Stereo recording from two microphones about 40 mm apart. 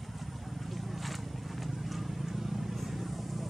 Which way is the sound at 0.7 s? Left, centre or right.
Centre.